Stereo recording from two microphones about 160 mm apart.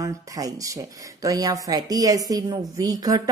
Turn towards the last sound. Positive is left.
turn(degrees=-25)  # may be behind; listen again after turning